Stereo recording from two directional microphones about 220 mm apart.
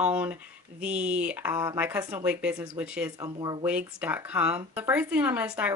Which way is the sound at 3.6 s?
5° right (ahead or behind).